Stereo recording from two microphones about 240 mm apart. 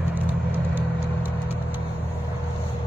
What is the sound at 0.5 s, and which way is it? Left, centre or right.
Vehicle, centre.